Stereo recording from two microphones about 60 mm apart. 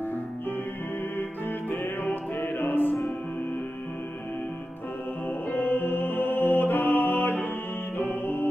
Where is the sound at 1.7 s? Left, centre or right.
Left.